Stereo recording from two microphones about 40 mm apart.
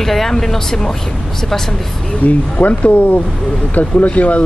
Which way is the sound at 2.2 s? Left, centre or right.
Left.